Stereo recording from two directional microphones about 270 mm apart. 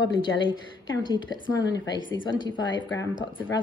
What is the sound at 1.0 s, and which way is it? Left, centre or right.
Speech, centre.